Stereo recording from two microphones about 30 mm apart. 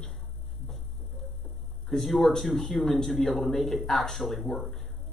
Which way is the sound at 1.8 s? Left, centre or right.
Centre.